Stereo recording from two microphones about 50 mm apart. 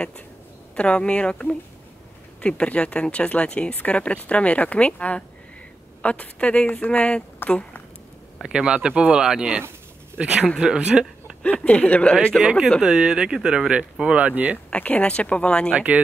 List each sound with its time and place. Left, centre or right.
0.7 s speech: left
8.4 s speech: centre
11.4 s speech: left
12.8 s speech: centre
14.1 s speech: right
14.7 s speech: left
15.7 s speech: right